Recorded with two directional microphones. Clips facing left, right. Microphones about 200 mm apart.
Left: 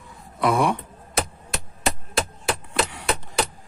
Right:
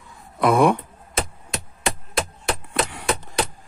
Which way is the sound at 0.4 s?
55° right (ahead or behind).